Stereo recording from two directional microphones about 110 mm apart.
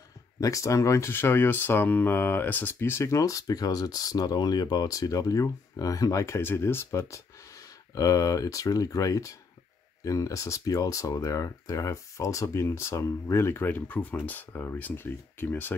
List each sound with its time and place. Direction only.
0.4 s speech: 30° left (ahead or behind)